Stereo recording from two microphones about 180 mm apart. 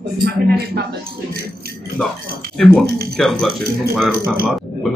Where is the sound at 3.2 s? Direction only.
Centre (ahead or behind).